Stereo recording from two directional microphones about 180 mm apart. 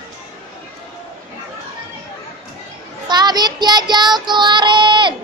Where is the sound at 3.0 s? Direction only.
25° right (ahead or behind).